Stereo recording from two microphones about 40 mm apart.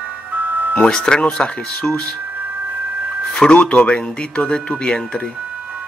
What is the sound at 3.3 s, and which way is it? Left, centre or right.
Speech, left.